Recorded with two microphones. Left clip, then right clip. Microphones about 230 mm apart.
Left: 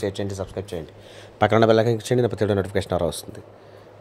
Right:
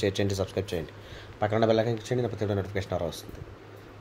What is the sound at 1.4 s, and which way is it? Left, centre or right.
Speech, left.